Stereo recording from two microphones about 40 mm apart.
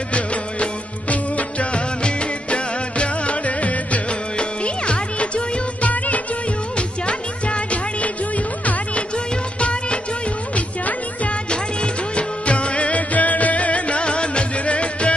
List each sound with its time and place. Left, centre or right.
0.1 s music: left
9.6 s music of bollywood: left
10.5 s music: left
11.5 s music of bollywood: left